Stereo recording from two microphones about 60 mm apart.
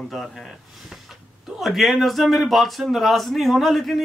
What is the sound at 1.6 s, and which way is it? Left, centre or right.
Speech, centre.